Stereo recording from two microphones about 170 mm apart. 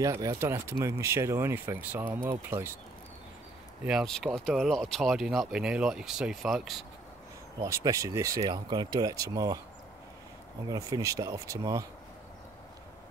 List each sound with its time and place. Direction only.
0.0 s speech: 20° right (ahead or behind)
3.8 s speech: centre (ahead or behind)
7.6 s speech: 20° right (ahead or behind)
10.7 s speech: 20° right (ahead or behind)